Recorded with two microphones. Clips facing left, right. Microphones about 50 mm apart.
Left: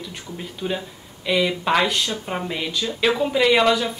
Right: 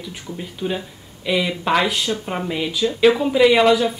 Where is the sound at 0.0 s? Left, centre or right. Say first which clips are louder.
Right 2 dB; centre.